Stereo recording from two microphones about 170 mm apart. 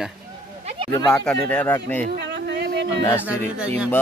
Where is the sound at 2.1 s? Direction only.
90° right.